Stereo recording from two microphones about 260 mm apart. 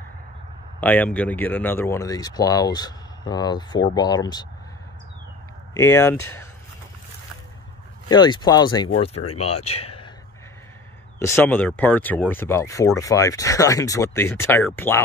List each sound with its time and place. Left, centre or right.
0.7 s speech: centre
5.8 s speech: centre
8.1 s speech: centre
11.1 s speech: centre